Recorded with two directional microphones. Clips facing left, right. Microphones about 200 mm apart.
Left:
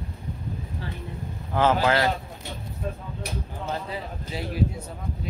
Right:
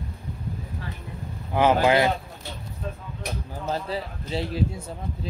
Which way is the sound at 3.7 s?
30° right (ahead or behind).